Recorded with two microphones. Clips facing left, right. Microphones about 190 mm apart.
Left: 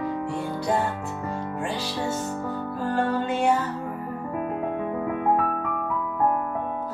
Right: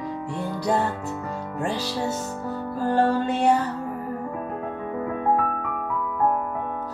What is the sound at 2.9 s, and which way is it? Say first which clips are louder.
Music: right 3 dB; 35° right (ahead or behind).